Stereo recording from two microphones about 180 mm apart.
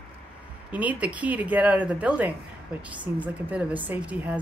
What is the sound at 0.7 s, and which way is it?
A woman's voice, 10° right (ahead or behind).